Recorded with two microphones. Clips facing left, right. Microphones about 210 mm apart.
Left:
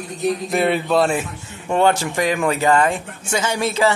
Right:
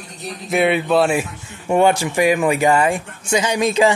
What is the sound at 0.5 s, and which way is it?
Speech, centre (ahead or behind).